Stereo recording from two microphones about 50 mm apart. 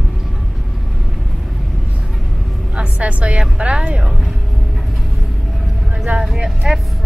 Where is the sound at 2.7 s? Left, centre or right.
Right.